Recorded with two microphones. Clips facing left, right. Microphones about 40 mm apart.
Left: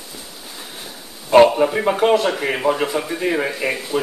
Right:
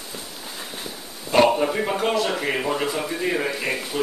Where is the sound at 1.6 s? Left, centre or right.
Centre.